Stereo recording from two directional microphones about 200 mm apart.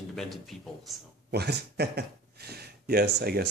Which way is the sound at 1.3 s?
55° right (ahead or behind).